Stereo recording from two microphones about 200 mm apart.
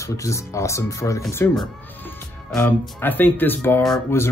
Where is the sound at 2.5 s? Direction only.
5° left (ahead or behind).